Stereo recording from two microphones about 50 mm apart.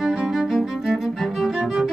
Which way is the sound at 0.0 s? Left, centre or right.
Centre.